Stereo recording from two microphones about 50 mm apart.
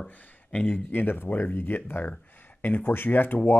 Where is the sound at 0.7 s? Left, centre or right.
Left.